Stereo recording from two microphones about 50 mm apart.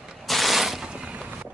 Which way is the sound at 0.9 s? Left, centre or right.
Right.